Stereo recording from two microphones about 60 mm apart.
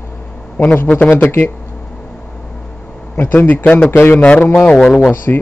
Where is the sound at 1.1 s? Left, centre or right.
Left.